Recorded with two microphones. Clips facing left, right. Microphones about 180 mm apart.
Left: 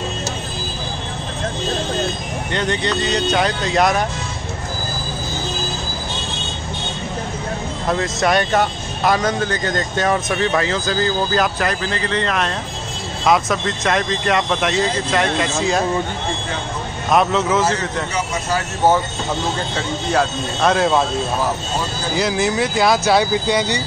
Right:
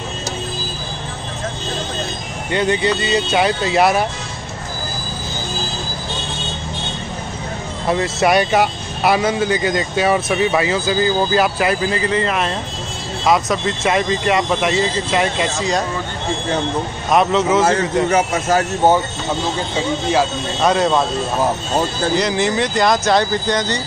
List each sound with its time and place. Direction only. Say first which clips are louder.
2.5 s speech: right 4 dB; 10° right (ahead or behind)
7.9 s speech: right 2 dB; 5° right (ahead or behind)
17.1 s speech: right 2 dB; centre (ahead or behind)
17.6 s a man's voice: right 6 dB; 50° right (ahead or behind)
19.7 s speech: right 5 dB; 5° right (ahead or behind)
22.1 s speech: left 1 dB; 5° left (ahead or behind)